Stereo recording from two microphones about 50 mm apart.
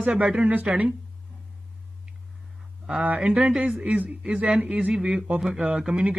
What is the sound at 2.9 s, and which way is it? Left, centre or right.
Speech, right.